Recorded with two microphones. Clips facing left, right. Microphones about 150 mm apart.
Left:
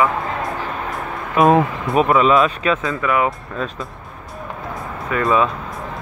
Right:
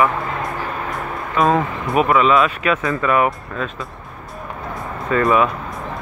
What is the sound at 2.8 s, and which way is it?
Speech, 5° left (ahead or behind).